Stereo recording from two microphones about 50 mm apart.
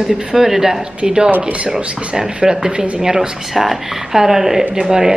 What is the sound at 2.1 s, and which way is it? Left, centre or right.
Speech, centre.